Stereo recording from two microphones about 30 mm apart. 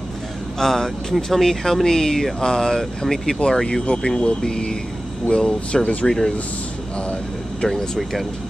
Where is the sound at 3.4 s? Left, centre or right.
Left.